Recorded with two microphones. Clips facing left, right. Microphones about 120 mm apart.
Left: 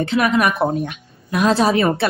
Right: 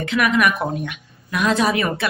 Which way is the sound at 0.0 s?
35° left (ahead or behind).